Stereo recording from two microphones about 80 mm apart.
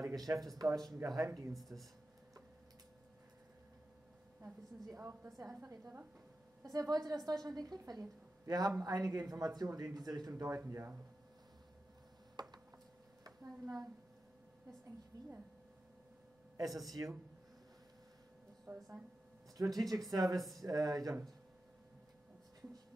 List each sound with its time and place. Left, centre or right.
0.0 s a sound: right
0.3 s speech: centre
0.6 s a woman's voice: right
1.7 s speech: centre
4.8 s speech: right
6.6 s a woman's voice: right
10.6 s speech: right
12.4 s a sound: right
13.2 s a sound: right
15.1 s a woman's voice: right
16.5 s a woman's voice: right
18.7 s speech: right
19.5 s a woman's voice: right